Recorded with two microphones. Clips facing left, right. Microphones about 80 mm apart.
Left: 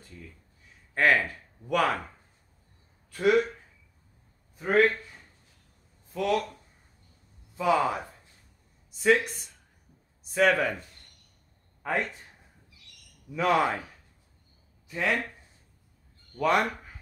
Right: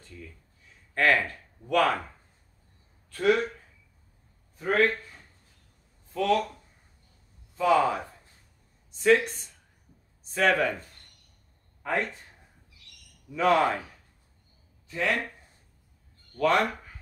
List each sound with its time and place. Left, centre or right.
0.9 s speech: centre
3.1 s speech: centre
4.6 s speech: centre
6.1 s speech: centre
7.5 s speech: centre
13.4 s speech: centre
14.9 s speech: centre
16.3 s speech: centre